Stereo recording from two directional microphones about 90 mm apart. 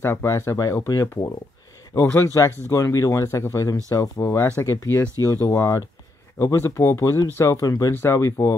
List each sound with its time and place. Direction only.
0.0 s speech: 30° left (ahead or behind)
4.2 s speech: 25° left (ahead or behind)
5.6 s speech: 40° left (ahead or behind)
7.9 s speech: 30° left (ahead or behind)